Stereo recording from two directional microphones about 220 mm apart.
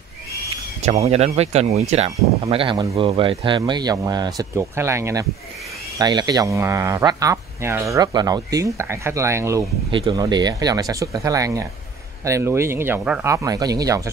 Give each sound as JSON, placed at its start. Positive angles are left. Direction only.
{"t": 1.0, "sound": "speech", "side_deg": -30}